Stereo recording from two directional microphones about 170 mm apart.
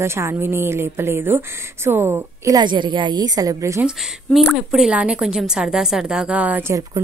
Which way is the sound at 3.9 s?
5° right (ahead or behind).